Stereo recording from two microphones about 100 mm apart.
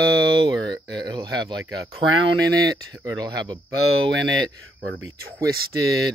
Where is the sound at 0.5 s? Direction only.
45° right (ahead or behind).